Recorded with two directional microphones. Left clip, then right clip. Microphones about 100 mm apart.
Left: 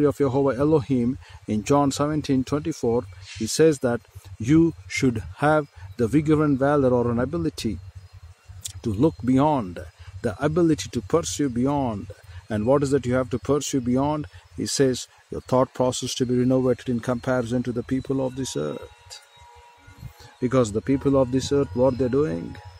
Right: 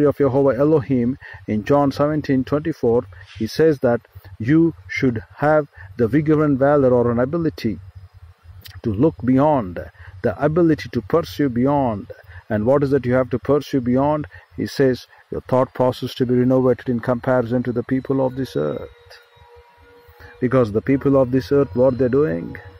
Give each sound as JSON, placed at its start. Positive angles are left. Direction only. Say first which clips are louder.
{"t": 0.0, "sound": "speech", "louder": "right 5 dB", "side_deg": 10}
{"t": 2.9, "sound": "speech", "louder": "right 7 dB", "side_deg": 5}
{"t": 4.4, "sound": "speech", "louder": "right 3 dB", "side_deg": 15}
{"t": 4.8, "sound": "speech", "louder": "right 3 dB", "side_deg": 30}
{"t": 5.9, "sound": "speech", "louder": "right 4 dB", "side_deg": 5}
{"t": 18.6, "sound": "speech", "louder": "right 7 dB", "side_deg": 25}
{"t": 20.3, "sound": "speech", "louder": "right 4 dB", "side_deg": 0}